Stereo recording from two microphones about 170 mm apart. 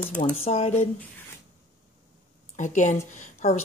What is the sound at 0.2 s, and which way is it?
Speech, 35° left (ahead or behind).